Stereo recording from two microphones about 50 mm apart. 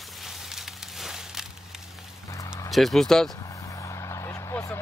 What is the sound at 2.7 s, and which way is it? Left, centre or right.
Speech, centre.